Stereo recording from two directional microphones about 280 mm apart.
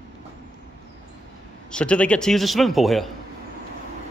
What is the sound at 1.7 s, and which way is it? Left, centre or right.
A man's voice, centre.